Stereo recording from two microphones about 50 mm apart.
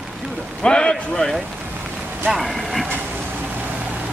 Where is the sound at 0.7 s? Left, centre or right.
Centre.